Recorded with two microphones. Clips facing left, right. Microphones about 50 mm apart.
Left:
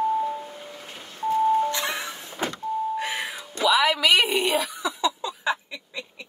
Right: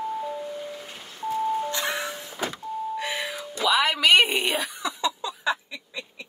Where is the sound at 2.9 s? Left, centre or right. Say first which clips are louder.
Left 1 dB; left.